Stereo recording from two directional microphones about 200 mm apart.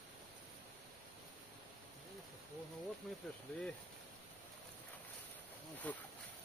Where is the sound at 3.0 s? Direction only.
Centre (ahead or behind).